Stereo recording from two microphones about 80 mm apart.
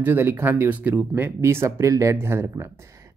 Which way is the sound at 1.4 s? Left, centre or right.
Right.